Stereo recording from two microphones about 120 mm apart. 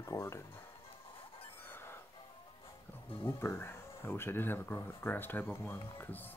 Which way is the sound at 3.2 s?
20° left (ahead or behind).